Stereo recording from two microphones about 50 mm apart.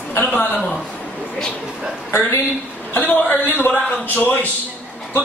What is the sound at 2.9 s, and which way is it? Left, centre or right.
Speech, left.